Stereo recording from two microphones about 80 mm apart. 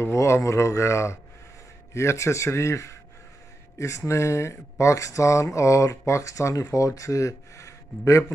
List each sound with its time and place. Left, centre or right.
0.0 s speech: left